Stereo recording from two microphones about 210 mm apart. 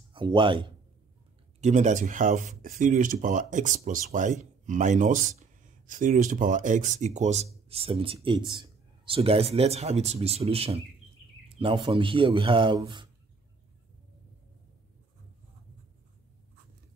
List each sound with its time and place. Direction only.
0.1 s speech: 20° right (ahead or behind)
1.6 s speech: 35° right (ahead or behind)